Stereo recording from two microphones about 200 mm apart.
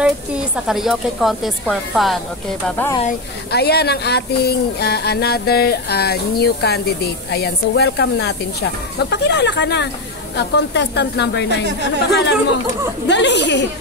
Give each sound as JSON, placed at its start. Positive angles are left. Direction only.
{"t": 0.0, "sound": "speech", "side_deg": -5}
{"t": 3.5, "sound": "a woman's voice", "side_deg": 55}